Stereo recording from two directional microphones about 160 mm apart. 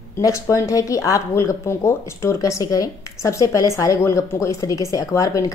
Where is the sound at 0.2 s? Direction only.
20° left (ahead or behind).